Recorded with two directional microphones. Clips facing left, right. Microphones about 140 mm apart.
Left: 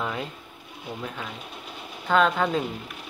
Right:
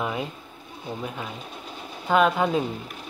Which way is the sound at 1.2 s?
5° left (ahead or behind).